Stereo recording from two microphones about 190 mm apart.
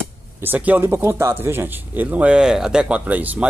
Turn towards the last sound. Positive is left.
turn(degrees=-10)  # may be behind; listen again after turning